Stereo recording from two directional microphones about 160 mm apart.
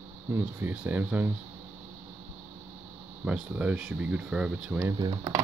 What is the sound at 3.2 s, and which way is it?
Speech, 10° right (ahead or behind).